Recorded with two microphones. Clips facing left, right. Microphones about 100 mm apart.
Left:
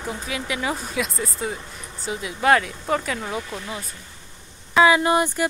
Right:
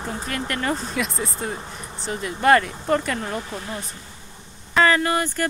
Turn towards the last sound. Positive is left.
turn(degrees=15)  # may be behind; listen again after turning